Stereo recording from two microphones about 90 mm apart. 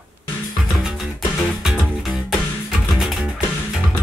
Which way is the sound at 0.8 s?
5° right (ahead or behind).